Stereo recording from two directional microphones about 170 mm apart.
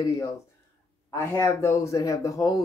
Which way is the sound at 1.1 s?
15° left (ahead or behind).